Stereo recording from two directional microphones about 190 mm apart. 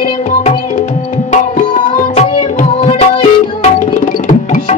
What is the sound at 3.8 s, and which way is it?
Music, 45° left (ahead or behind).